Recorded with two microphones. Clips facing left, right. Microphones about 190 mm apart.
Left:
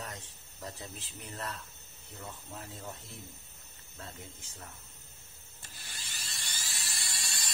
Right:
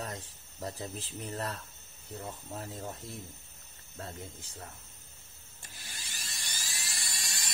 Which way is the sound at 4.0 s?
35° right (ahead or behind).